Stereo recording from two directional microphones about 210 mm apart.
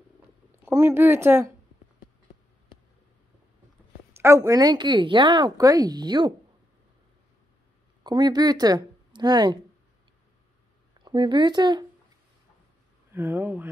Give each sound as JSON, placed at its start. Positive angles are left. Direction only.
{"t": 0.7, "sound": "speech", "side_deg": -10}
{"t": 4.2, "sound": "speech", "side_deg": -15}
{"t": 8.0, "sound": "speech", "side_deg": -20}
{"t": 11.0, "sound": "speech", "side_deg": -20}
{"t": 13.1, "sound": "speech", "side_deg": -10}